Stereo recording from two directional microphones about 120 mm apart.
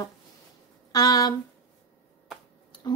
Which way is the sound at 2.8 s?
35° left (ahead or behind).